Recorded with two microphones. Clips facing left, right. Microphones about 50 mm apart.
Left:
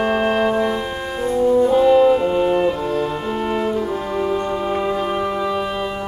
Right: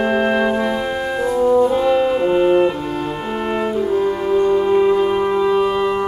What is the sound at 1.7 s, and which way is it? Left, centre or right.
Brass instrument, centre.